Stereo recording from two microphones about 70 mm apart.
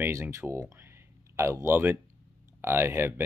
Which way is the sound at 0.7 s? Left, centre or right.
Right.